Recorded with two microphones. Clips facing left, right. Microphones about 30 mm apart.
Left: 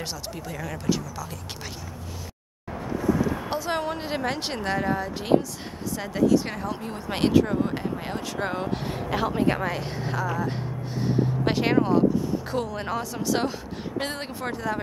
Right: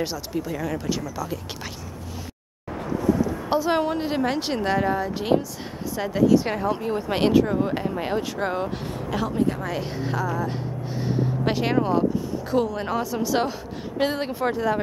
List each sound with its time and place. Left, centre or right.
0.0 s a woman's voice: centre
3.4 s a woman's voice: centre
8.4 s a woman's voice: centre
8.8 s speech: left
9.8 s a woman's voice: centre